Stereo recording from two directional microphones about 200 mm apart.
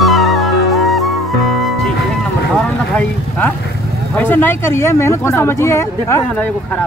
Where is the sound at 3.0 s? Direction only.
10° left (ahead or behind).